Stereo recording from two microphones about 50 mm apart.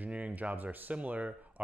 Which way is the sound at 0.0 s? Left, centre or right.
Right.